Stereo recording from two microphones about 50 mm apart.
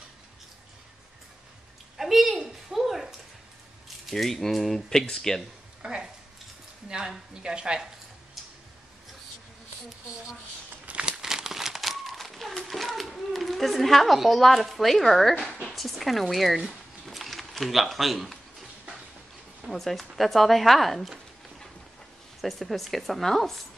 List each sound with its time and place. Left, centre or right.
2.0 s a sound: centre
4.1 s speech: centre
5.8 s a sound: centre
6.9 s a woman's voice: centre
10.9 s crumpling: right
11.1 s crumpling: centre
15.6 s speech: centre
17.0 s a sound: centre
19.7 s a woman's voice: centre
22.4 s a woman's voice: centre